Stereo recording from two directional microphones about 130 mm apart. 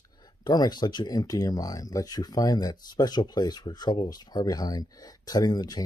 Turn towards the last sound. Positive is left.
turn(degrees=30)  # may be behind; listen again after turning